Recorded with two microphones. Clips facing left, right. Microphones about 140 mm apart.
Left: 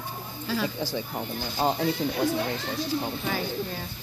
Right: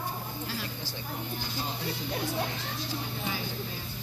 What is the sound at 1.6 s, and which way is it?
Speech, 90° left.